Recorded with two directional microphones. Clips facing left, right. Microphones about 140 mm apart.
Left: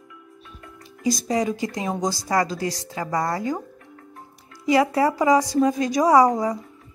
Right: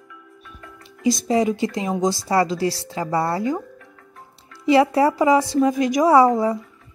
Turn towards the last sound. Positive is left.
turn(degrees=20)  # may be behind; listen again after turning